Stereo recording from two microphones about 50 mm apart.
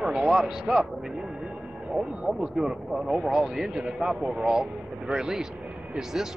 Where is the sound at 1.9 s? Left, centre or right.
Centre.